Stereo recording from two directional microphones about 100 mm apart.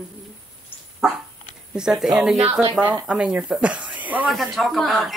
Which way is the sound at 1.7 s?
5° right (ahead or behind).